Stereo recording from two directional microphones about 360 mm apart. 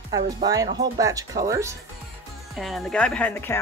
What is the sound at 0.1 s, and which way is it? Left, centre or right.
Speech, centre.